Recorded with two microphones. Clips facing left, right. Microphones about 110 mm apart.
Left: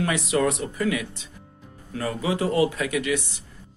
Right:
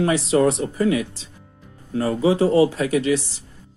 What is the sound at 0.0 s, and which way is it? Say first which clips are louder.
Speech: right 5 dB; 30° right (ahead or behind).